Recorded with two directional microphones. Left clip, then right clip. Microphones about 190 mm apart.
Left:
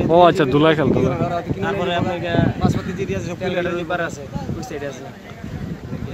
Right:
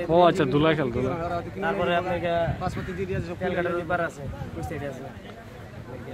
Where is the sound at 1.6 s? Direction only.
35° right (ahead or behind).